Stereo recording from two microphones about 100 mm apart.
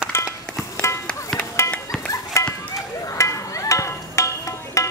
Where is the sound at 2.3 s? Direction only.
30° left (ahead or behind).